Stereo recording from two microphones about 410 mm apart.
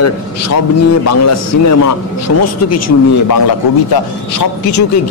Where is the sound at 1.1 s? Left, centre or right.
Left.